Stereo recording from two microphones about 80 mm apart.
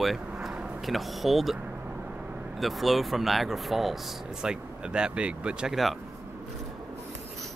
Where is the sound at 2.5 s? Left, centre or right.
Centre.